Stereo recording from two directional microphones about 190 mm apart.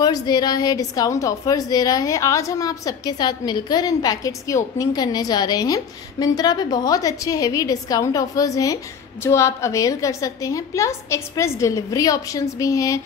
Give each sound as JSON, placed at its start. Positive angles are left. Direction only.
{"t": 0.0, "sound": "a woman's voice", "side_deg": 20}